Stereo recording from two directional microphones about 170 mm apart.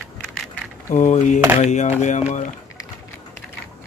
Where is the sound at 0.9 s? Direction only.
45° left (ahead or behind).